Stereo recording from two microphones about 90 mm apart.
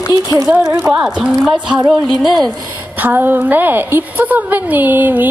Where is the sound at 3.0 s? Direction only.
20° right (ahead or behind).